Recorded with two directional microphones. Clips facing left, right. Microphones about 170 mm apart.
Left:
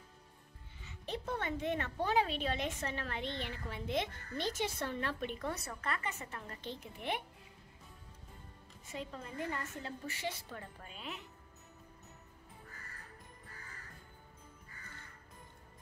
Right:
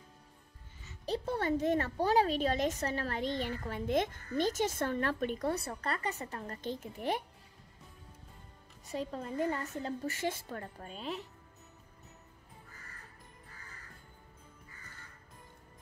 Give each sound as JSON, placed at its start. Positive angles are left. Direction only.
{"t": 0.8, "sound": "speech", "side_deg": -35}
{"t": 5.5, "sound": "speech", "side_deg": -30}
{"t": 8.8, "sound": "speech", "side_deg": -40}